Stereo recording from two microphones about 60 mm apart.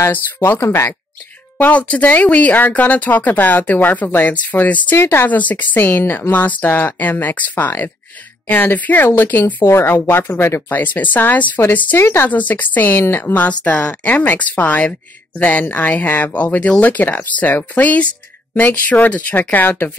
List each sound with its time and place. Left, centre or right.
0.4 s speech: left
1.6 s speech: left
4.9 s speech: left
5.3 s speech: left
10.7 s speech: left
12.0 s speech: left
12.3 s speech: left